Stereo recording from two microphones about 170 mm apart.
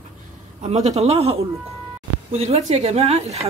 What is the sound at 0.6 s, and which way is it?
Speech, 40° right (ahead or behind).